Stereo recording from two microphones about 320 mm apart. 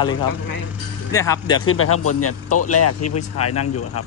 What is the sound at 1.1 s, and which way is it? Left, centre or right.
Speech, centre.